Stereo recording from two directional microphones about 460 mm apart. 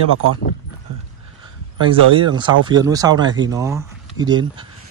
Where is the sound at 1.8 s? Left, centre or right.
Centre.